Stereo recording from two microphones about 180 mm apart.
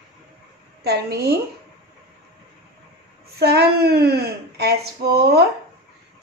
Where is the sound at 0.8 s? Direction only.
65° right (ahead or behind).